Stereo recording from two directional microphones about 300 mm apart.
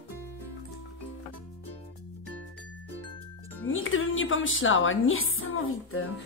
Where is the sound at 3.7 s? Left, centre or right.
Left.